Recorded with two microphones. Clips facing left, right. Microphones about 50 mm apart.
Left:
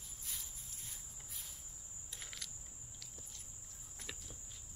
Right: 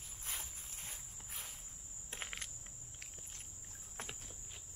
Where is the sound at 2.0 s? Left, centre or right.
Right.